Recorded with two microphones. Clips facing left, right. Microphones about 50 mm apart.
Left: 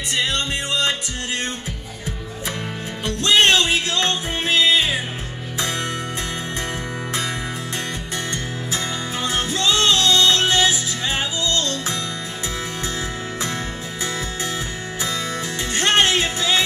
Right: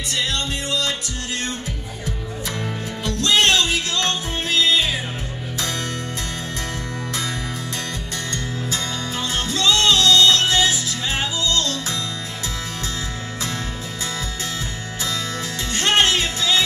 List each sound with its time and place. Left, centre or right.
0.1 s music: left
3.0 s music: left
8.7 s music: left
15.7 s music: left